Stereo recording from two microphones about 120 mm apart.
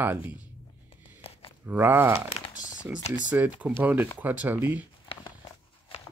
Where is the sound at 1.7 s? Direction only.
20° right (ahead or behind).